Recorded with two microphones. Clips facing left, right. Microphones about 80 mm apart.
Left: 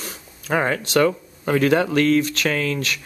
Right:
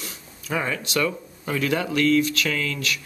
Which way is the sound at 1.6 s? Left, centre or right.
Left.